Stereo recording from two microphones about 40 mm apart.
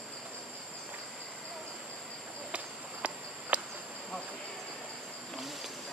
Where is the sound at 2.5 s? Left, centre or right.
Right.